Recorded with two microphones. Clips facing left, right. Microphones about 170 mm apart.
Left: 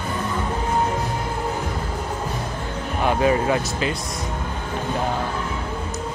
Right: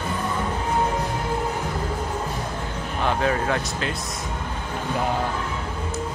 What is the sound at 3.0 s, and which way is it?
Speech, 10° left (ahead or behind).